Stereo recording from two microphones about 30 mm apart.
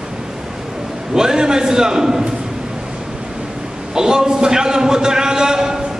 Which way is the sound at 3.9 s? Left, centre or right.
Right.